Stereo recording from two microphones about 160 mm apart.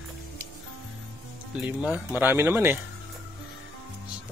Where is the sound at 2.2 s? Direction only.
15° right (ahead or behind).